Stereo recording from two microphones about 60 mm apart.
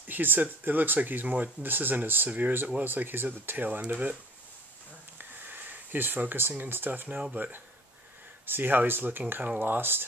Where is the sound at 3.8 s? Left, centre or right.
Right.